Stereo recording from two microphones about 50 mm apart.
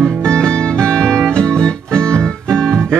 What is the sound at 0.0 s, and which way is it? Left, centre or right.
Music, centre.